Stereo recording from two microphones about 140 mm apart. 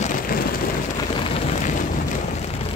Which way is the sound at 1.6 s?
65° left (ahead or behind).